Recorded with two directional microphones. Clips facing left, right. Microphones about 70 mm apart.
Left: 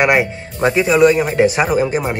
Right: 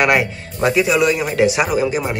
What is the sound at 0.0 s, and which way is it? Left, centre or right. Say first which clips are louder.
A man's voice: left 2 dB; left.